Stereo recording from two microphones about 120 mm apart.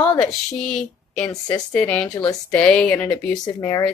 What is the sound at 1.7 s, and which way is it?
A woman's voice, 10° left (ahead or behind).